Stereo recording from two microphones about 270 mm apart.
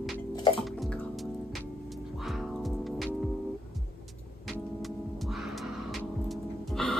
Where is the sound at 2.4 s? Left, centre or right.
Centre.